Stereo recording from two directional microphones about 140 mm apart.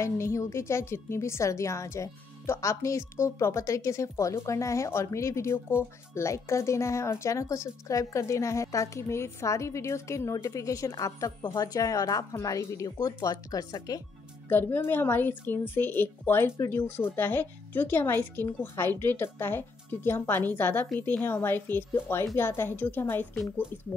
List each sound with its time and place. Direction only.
0.0 s a woman's voice: 20° left (ahead or behind)
14.5 s a woman's voice: 15° left (ahead or behind)